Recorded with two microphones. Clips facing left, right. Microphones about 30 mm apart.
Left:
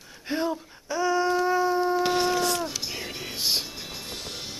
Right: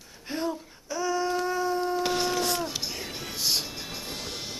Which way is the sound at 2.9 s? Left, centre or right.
Centre.